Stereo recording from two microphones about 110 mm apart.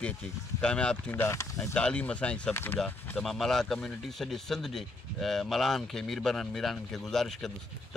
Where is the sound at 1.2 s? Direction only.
25° left (ahead or behind).